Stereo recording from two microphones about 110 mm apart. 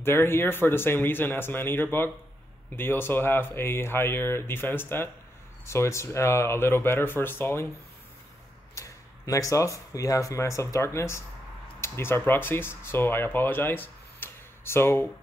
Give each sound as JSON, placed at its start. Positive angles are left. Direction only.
{"t": 0.0, "sound": "speech", "side_deg": 20}
{"t": 8.7, "sound": "speech", "side_deg": 30}